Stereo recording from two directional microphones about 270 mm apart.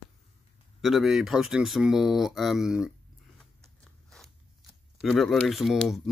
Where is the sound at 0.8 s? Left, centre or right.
Centre.